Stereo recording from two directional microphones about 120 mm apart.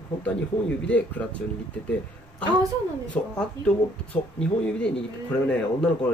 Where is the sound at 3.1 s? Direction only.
10° left (ahead or behind).